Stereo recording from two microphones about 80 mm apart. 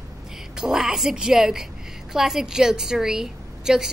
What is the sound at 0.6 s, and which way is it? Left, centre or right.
A woman's voice, centre.